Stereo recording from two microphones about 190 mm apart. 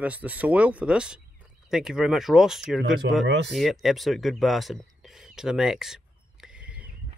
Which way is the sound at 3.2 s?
65° right (ahead or behind).